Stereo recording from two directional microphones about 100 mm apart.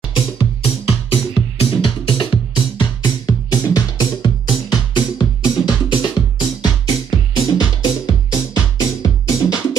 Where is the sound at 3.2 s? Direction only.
40° left (ahead or behind).